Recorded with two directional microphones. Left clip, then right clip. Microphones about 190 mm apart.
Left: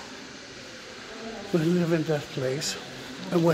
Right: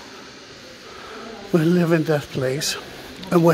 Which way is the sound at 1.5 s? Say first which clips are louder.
Right 7 dB; 25° right (ahead or behind).